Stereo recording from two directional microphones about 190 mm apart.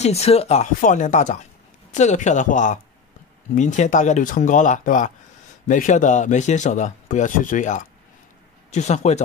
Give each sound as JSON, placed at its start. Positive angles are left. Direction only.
{"t": 0.0, "sound": "speech", "side_deg": 35}